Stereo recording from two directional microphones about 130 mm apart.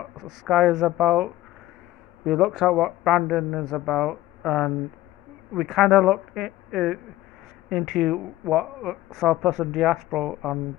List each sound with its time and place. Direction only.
0.0 s speech: centre (ahead or behind)